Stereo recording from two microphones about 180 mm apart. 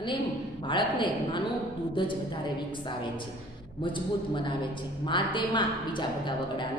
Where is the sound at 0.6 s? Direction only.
25° left (ahead or behind).